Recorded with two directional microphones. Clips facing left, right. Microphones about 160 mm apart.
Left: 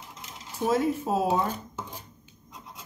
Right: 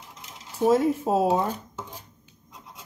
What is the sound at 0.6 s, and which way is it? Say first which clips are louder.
Speech: right 4 dB; 35° right (ahead or behind).